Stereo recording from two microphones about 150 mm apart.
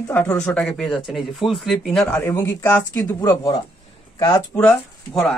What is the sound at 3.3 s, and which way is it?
Speech, 25° left (ahead or behind).